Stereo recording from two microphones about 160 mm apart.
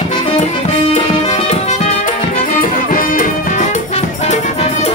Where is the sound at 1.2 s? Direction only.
45° left (ahead or behind).